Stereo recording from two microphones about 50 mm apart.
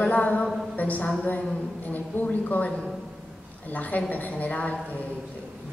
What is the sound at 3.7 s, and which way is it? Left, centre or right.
A woman's voice, left.